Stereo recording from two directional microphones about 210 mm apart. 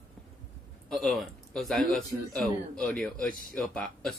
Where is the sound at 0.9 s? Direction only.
Centre (ahead or behind).